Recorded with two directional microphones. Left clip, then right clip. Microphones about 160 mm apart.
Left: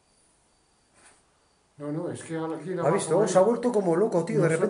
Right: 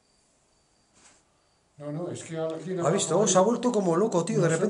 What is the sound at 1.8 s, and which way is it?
A man's voice, 15° left (ahead or behind).